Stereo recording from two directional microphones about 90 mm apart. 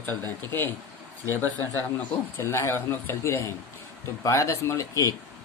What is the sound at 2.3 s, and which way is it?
Speech, 30° left (ahead or behind).